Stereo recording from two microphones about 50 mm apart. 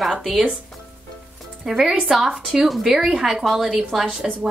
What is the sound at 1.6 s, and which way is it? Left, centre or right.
A woman's voice, centre.